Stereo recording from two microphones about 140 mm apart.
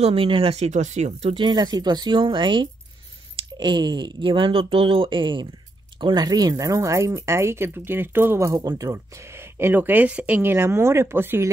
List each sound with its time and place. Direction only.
0.0 s speech: 40° right (ahead or behind)
1.3 s speech: 30° right (ahead or behind)